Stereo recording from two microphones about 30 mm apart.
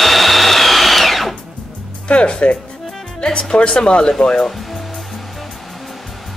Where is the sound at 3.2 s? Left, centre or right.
Left.